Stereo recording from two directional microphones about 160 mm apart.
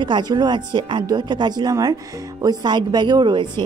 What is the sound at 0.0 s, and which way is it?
Speech, 25° right (ahead or behind).